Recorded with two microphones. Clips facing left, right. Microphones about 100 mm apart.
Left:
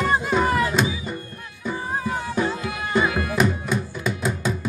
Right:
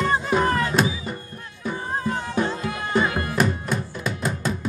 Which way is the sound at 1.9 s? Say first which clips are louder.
Right 1 dB; 10° left (ahead or behind).